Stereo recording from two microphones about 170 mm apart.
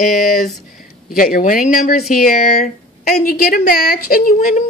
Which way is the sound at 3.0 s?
60° left (ahead or behind).